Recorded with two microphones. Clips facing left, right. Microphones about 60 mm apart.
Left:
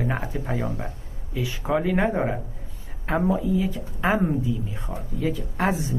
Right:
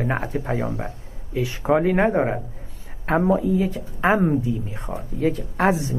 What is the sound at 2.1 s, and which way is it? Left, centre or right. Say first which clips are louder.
A woman's voice: right 4 dB; centre.